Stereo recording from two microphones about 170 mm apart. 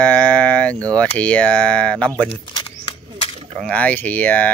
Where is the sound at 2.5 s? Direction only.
30° left (ahead or behind).